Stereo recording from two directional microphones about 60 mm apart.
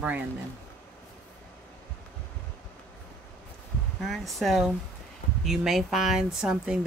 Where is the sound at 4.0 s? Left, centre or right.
Centre.